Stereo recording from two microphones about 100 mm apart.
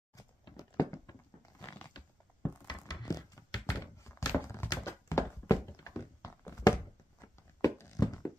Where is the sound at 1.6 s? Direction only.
30° left (ahead or behind).